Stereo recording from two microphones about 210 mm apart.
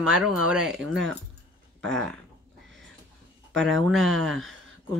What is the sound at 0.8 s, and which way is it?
Speech, 60° right (ahead or behind).